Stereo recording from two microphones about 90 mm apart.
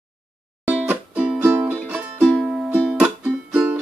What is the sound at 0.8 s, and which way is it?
Music, 15° right (ahead or behind).